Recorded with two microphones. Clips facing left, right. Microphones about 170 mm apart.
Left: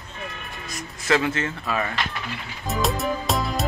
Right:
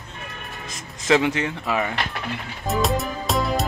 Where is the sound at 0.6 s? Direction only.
20° right (ahead or behind).